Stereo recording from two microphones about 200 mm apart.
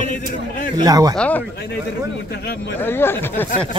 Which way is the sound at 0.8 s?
20° right (ahead or behind).